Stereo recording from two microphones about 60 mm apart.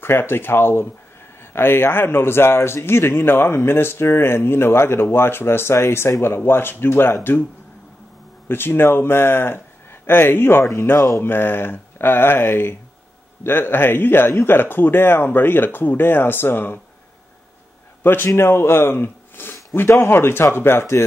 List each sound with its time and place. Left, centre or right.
0.0 s speech: left
8.5 s speech: left
10.7 s speech: left
11.1 s speech: left
18.2 s speech: left